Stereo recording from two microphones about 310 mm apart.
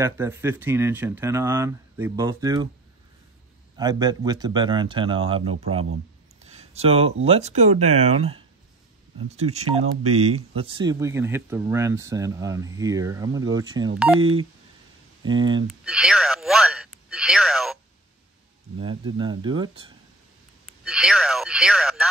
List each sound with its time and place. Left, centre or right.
0.0 s speech: centre
3.7 s speech: centre
9.4 s speech: right
15.2 s speech: centre
15.8 s speech: centre
18.8 s speech: centre
20.8 s speech: centre